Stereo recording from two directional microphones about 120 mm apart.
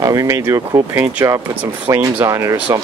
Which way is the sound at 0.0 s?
30° right (ahead or behind).